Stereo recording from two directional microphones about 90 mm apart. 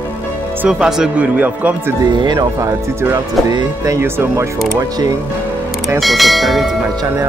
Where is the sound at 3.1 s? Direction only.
50° right (ahead or behind).